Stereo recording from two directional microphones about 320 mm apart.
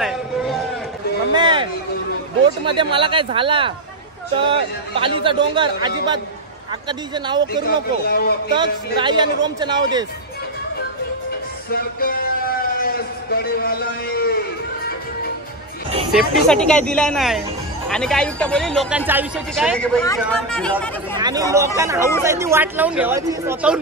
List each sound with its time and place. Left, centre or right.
0.0 s a sound: centre
1.3 s a sound: centre
2.4 s a man's voice: centre
6.9 s a man's voice: centre
7.6 s speech: left
8.5 s a man's voice: centre
11.7 s a sound: left
16.1 s speech: centre
21.2 s a man's voice: centre